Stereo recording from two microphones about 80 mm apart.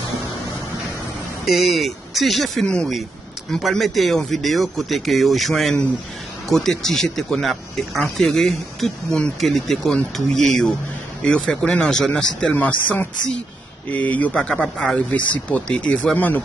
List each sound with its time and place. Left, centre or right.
1.4 s speech: centre
12.5 s speech: left
16.2 s speech: left